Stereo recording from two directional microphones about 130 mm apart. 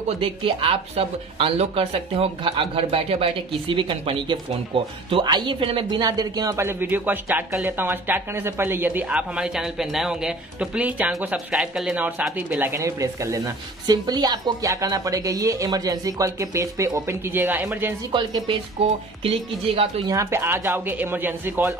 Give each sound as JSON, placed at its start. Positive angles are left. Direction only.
{"t": 0.2, "sound": "speech", "side_deg": -45}
{"t": 18.1, "sound": "speech", "side_deg": -35}
{"t": 18.8, "sound": "speech", "side_deg": -50}
{"t": 20.1, "sound": "speech", "side_deg": -20}